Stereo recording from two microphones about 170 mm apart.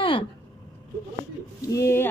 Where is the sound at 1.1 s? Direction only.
20° left (ahead or behind).